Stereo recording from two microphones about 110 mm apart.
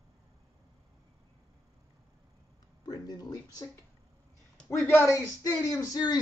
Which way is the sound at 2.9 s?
35° left (ahead or behind).